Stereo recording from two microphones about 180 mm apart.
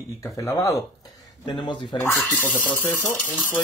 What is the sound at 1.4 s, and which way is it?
Speech, 25° left (ahead or behind).